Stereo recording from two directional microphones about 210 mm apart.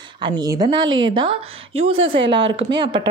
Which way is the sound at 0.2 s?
20° right (ahead or behind).